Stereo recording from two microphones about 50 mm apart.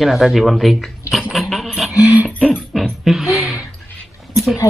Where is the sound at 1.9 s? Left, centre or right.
Left.